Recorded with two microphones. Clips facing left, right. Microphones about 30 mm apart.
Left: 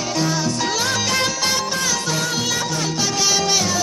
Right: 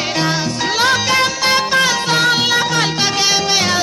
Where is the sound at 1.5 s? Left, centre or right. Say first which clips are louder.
Right 8 dB; right.